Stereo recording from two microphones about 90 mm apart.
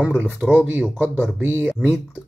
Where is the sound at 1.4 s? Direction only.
20° right (ahead or behind).